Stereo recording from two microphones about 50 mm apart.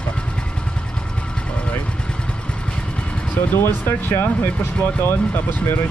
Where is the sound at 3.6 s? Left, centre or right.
Left.